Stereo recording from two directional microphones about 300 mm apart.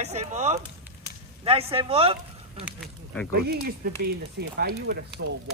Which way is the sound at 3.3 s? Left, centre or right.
Right.